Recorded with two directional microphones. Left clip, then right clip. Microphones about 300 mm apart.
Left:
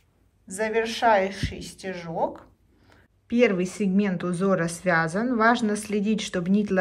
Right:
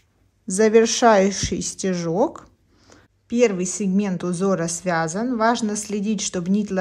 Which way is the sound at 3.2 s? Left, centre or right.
Centre.